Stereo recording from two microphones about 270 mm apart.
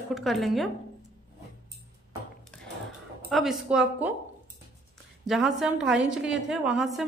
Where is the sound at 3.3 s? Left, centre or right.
Centre.